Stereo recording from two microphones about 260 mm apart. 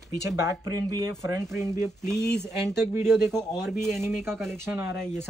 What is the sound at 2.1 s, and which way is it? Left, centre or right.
Speech, left.